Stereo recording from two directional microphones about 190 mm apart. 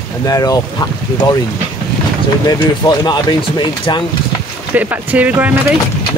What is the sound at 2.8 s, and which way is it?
Speech, 25° left (ahead or behind).